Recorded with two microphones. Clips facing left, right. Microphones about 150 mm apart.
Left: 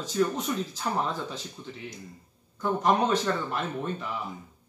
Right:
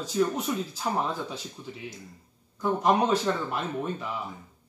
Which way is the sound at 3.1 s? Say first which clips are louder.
Right 1 dB; 10° right (ahead or behind).